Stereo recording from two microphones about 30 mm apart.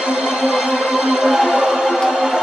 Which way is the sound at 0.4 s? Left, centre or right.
Centre.